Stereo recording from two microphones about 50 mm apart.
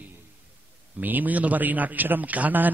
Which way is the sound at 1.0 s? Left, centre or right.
Right.